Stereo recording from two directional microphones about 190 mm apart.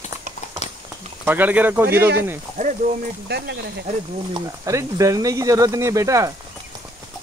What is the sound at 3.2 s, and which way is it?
Speech, 65° right (ahead or behind).